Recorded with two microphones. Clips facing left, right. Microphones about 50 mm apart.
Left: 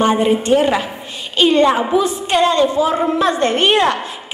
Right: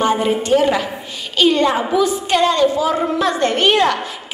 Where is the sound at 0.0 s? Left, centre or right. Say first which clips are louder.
Left 2 dB; left.